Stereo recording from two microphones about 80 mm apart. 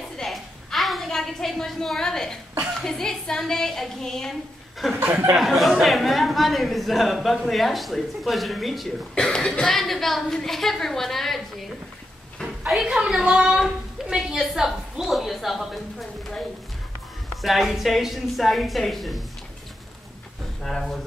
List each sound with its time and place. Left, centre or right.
0.2 s a sound: centre
2.8 s a woman's voice: centre
4.9 s speech: right
5.3 s a woman's voice: centre
12.4 s a sound: centre
14.5 s a woman's voice: centre
20.6 s speech: centre